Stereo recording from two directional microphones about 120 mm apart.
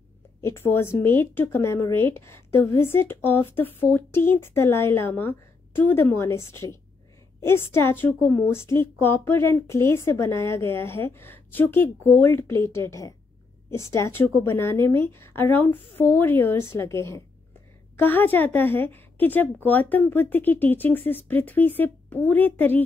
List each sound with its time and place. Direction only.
0.4 s a woman's voice: 20° left (ahead or behind)